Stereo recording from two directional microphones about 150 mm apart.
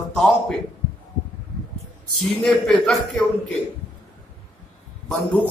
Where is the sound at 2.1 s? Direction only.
5° left (ahead or behind).